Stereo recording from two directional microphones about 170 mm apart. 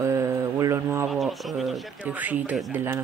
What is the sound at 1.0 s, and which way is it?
Speech, centre (ahead or behind).